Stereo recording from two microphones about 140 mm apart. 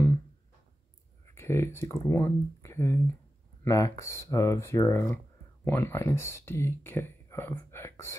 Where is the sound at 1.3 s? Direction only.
20° left (ahead or behind).